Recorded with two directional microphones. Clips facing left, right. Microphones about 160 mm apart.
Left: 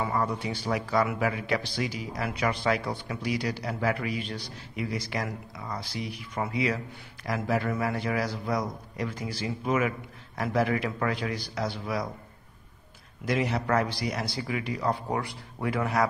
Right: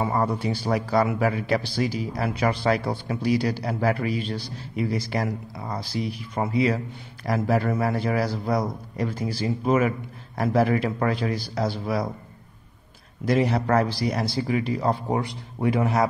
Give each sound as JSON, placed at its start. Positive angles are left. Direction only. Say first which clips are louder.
{"t": 0.0, "sound": "speech", "louder": "right 4 dB", "side_deg": -30}
{"t": 13.3, "sound": "speech", "louder": "right 5 dB", "side_deg": -35}